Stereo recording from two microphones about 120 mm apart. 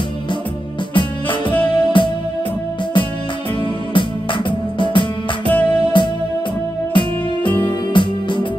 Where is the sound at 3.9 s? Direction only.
45° left (ahead or behind).